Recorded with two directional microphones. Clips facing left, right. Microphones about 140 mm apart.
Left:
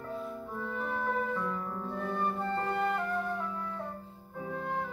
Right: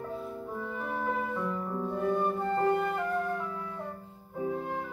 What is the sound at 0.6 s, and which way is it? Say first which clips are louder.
Music: even; 10° right (ahead or behind).